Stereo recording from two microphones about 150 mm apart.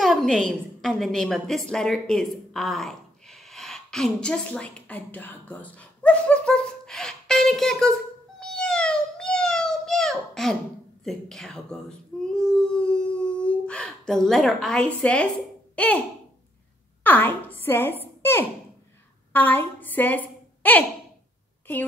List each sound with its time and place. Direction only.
0.0 s a sound: centre (ahead or behind)
11.1 s speech: centre (ahead or behind)
12.4 s howl: 5° left (ahead or behind)
15.7 s speech: 10° left (ahead or behind)
17.0 s a woman's voice: 10° left (ahead or behind)
18.0 s a sound: 15° left (ahead or behind)
19.3 s a woman's voice: 10° left (ahead or behind)